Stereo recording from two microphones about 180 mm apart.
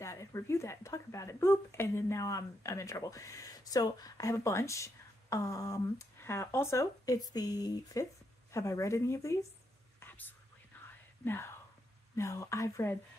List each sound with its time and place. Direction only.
0.0 s speech: 15° left (ahead or behind)
9.9 s whispering: 10° left (ahead or behind)
11.2 s speech: 15° left (ahead or behind)